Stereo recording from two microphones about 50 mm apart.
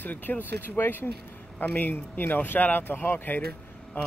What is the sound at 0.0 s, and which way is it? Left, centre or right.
Speech, left.